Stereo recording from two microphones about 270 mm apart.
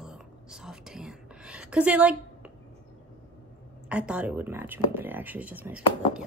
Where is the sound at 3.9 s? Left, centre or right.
Centre.